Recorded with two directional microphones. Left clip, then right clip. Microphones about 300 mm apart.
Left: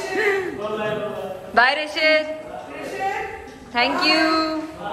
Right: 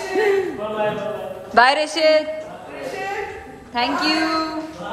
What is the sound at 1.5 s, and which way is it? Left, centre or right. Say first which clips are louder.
Speech: right 3 dB; centre.